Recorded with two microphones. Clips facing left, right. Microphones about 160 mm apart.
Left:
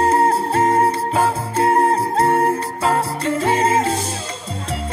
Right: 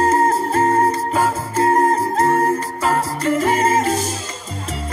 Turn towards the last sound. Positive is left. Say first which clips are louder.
# right 1 dB
turn(degrees=30)  # may be behind; listen again after turning